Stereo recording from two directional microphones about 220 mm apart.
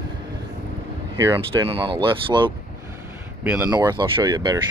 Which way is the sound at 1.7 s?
25° right (ahead or behind).